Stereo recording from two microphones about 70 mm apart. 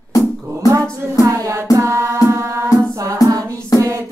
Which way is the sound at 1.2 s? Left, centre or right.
Right.